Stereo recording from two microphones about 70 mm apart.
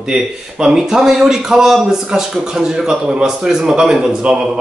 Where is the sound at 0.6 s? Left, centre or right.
Centre.